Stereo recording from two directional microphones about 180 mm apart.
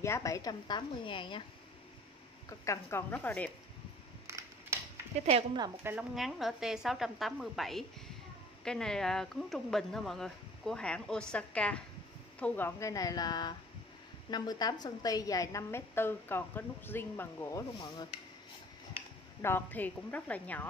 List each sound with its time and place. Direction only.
0.0 s a woman's voice: 15° left (ahead or behind)
2.6 s a woman's voice: 15° left (ahead or behind)
4.3 s a sound: 15° right (ahead or behind)
5.2 s speech: 35° right (ahead or behind)
5.9 s a woman's voice: 5° right (ahead or behind); by 17.6 s 10° left (ahead or behind)
19.4 s a woman's voice: 10° left (ahead or behind)